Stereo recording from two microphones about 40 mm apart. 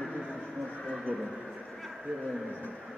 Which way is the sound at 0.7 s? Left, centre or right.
Left.